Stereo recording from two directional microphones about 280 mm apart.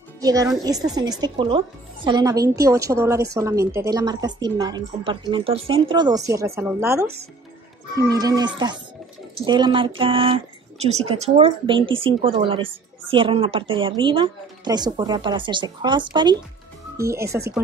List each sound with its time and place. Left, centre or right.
0.2 s speech: centre